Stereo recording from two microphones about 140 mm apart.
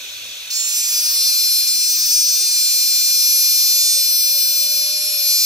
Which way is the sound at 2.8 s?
25° right (ahead or behind).